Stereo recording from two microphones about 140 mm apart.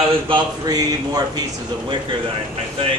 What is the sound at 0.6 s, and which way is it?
Speech, 30° right (ahead or behind).